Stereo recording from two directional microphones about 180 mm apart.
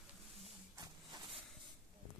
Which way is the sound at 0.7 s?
20° right (ahead or behind).